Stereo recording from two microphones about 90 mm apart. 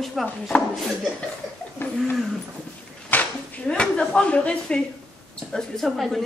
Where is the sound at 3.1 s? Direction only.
15° left (ahead or behind).